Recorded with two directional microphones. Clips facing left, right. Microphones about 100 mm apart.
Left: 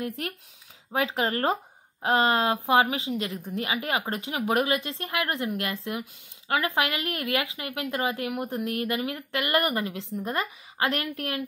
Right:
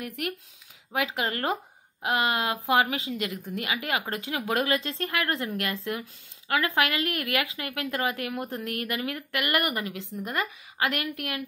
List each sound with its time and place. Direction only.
0.0 s speech: 30° left (ahead or behind)